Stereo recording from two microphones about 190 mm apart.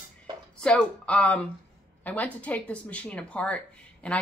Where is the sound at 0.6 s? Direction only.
5° left (ahead or behind).